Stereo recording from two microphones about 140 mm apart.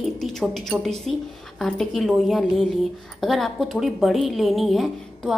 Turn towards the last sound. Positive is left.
turn(degrees=0)  # may be behind; listen again after turning